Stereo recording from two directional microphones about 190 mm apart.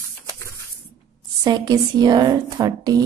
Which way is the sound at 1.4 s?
20° right (ahead or behind).